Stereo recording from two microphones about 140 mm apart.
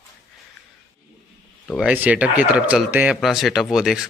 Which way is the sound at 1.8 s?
10° right (ahead or behind).